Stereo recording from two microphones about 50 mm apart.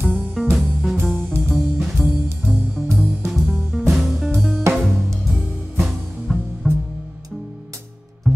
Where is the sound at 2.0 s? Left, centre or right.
Right.